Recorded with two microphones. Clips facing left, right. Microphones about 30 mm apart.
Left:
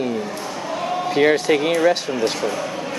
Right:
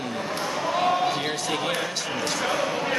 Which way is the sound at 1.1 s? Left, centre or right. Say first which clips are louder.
Left 11 dB; left.